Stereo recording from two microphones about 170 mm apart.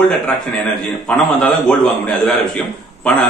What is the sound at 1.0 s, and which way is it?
A man's voice, 5° left (ahead or behind).